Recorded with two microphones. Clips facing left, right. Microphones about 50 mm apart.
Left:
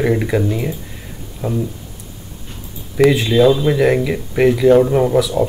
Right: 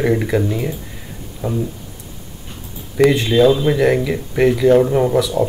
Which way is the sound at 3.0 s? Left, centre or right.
Centre.